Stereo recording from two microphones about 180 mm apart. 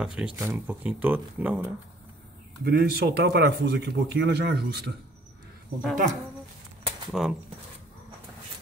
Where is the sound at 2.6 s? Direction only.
60° right (ahead or behind).